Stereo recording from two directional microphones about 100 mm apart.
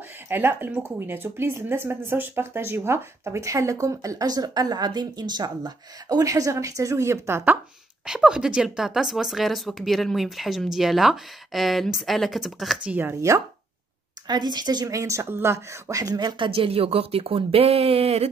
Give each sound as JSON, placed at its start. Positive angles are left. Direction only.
{"t": 0.3, "sound": "speech", "side_deg": -20}
{"t": 8.0, "sound": "a woman's voice", "side_deg": -10}
{"t": 12.9, "sound": "speech", "side_deg": -20}
{"t": 14.2, "sound": "speech", "side_deg": -45}
{"t": 16.4, "sound": "speech", "side_deg": -70}